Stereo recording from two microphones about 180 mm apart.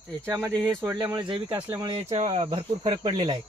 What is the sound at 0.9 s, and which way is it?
Speech, 25° right (ahead or behind).